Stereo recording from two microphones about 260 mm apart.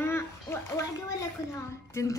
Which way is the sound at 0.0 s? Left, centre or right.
Centre.